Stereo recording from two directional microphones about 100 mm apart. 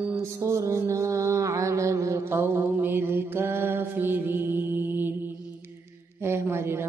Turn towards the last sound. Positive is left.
turn(degrees=-25)  # may be behind; listen again after turning